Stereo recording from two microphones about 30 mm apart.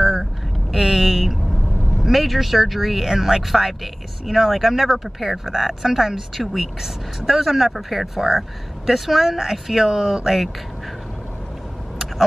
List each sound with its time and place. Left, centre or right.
0.0 s vehicle: centre
2.1 s speech: centre
4.9 s speech: centre